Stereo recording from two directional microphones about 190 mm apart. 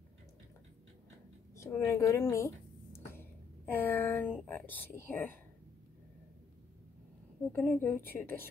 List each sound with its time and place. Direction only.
1.5 s speech: 15° left (ahead or behind)
7.5 s a woman's voice: 10° left (ahead or behind)